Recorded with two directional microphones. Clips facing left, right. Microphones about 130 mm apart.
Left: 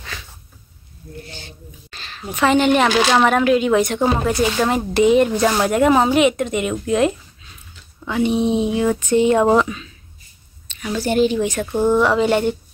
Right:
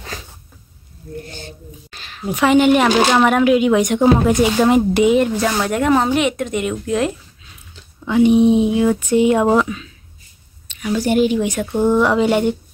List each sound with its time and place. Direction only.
0.0 s a sound: 40° right (ahead or behind)
1.9 s a woman's voice: 10° right (ahead or behind)
5.1 s speech: centre (ahead or behind)
8.1 s speech: 15° right (ahead or behind)